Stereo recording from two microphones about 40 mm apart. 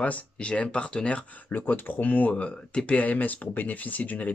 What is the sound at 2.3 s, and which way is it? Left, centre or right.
Speech, left.